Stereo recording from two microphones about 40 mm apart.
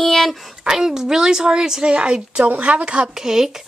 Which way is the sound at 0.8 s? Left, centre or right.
Centre.